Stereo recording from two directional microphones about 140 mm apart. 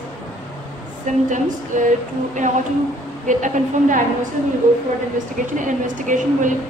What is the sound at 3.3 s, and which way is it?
Speech, 65° right (ahead or behind).